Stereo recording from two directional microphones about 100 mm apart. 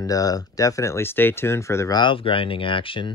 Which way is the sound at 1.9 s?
55° left (ahead or behind).